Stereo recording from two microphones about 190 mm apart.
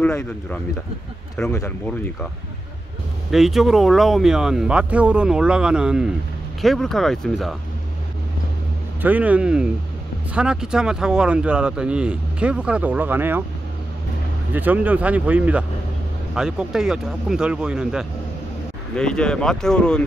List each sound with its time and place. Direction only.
0.0 s speech: 5° left (ahead or behind)
3.3 s speech: centre (ahead or behind)
9.0 s speech: 10° right (ahead or behind)
14.5 s speech: 10° right (ahead or behind)